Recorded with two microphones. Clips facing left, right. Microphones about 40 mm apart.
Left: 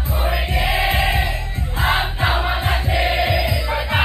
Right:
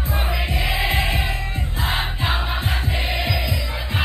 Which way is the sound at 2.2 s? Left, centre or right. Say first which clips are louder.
Left 4 dB; left.